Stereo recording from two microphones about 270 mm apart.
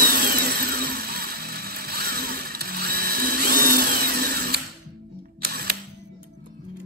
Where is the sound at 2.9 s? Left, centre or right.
Right.